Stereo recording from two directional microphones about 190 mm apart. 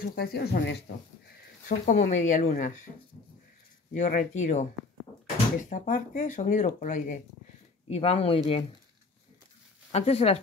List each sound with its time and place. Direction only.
0.0 s speech: 55° left (ahead or behind)
1.9 s speech: 40° left (ahead or behind)
3.9 s speech: 40° left (ahead or behind)
7.9 s speech: 30° left (ahead or behind)
9.9 s speech: 35° left (ahead or behind)